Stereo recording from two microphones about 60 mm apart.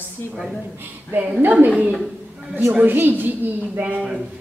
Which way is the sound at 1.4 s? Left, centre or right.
Right.